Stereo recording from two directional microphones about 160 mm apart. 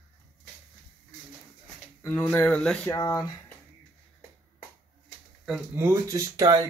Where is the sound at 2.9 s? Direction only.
20° left (ahead or behind).